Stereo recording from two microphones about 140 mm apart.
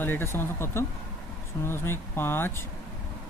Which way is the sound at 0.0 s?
15° left (ahead or behind).